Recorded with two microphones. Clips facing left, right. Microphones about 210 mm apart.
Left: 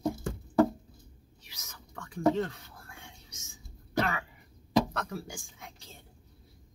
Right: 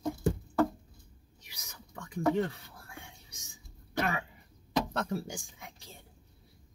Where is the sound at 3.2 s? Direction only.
15° right (ahead or behind).